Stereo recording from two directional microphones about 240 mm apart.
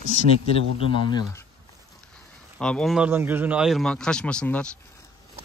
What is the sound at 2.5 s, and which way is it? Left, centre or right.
Speech, centre.